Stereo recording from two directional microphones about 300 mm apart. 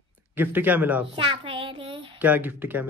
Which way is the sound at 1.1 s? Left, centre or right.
Centre.